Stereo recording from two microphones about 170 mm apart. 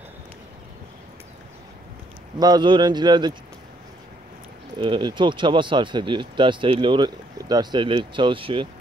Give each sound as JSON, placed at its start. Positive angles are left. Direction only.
{"t": 2.3, "sound": "speech", "side_deg": -25}
{"t": 4.7, "sound": "speech", "side_deg": -30}